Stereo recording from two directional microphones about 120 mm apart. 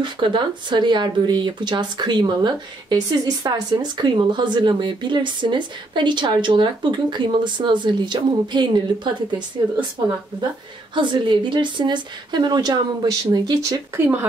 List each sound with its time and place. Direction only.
0.0 s speech: 40° right (ahead or behind)
11.0 s speech: 40° right (ahead or behind)